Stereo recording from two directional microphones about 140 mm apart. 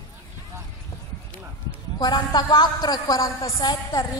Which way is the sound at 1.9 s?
30° left (ahead or behind).